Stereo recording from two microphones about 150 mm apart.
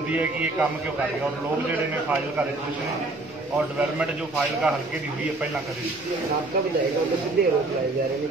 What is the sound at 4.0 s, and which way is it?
Speech, 5° right (ahead or behind).